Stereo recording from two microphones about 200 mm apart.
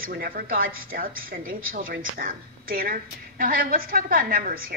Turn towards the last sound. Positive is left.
turn(degrees=-45)  # may be behind; listen again after turning